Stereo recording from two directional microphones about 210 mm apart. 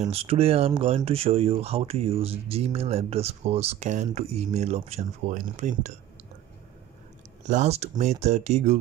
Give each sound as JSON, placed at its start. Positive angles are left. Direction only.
{"t": 0.0, "sound": "speech", "side_deg": -25}
{"t": 7.4, "sound": "speech", "side_deg": -35}